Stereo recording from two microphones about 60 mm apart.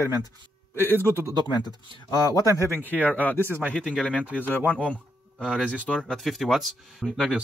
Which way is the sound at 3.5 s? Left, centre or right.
Right.